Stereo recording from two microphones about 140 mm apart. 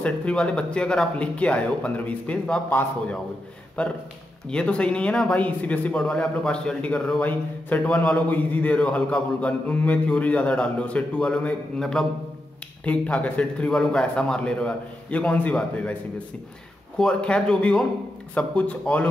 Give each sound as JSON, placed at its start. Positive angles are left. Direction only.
{"t": 0.0, "sound": "speech", "side_deg": 10}